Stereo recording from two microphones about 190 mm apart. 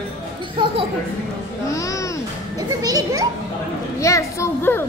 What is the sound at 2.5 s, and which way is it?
Speech, 20° right (ahead or behind).